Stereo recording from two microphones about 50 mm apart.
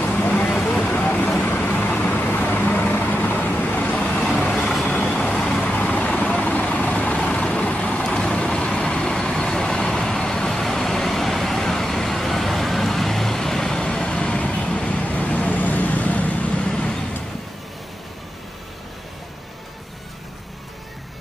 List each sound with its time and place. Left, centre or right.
0.0 s vehicle: left
4.4 s vehicle: centre
7.2 s vehicle: centre